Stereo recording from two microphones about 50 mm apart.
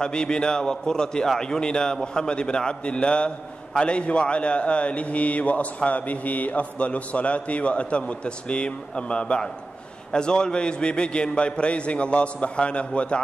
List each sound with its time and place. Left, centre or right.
0.0 s a man's voice: centre